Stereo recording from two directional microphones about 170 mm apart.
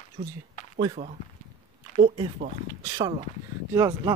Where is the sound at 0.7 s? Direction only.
30° right (ahead or behind).